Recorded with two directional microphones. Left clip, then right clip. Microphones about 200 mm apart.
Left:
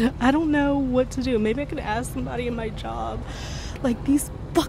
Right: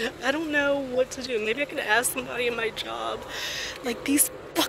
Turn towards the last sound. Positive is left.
turn(degrees=10)  # may be behind; listen again after turning